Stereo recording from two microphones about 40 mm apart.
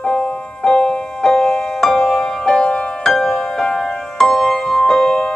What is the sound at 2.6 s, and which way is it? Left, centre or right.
Music, left.